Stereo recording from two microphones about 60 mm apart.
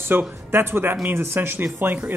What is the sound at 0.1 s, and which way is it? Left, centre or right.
Speech, right.